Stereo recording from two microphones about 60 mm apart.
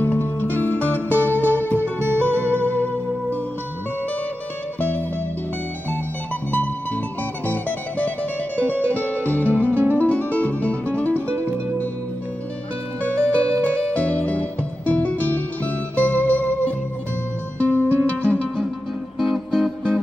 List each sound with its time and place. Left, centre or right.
0.0 s music: left
1.8 s music: right
4.7 s music: left
6.5 s music: left
13.1 s music: left
19.1 s music: centre